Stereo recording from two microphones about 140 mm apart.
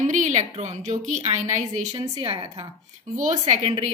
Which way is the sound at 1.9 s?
40° right (ahead or behind).